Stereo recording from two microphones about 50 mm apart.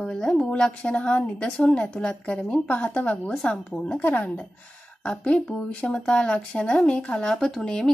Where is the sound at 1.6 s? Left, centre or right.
Left.